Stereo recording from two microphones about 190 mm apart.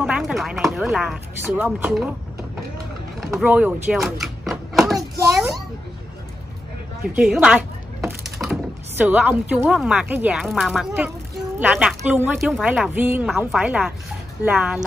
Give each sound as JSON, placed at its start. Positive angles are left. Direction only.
{"t": 0.0, "sound": "speech", "side_deg": -5}
{"t": 3.3, "sound": "speech", "side_deg": -5}
{"t": 4.9, "sound": "a sound", "side_deg": -15}
{"t": 7.2, "sound": "speech", "side_deg": -5}